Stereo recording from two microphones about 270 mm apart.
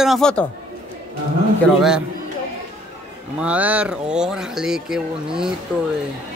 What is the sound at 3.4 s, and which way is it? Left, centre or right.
Speech, centre.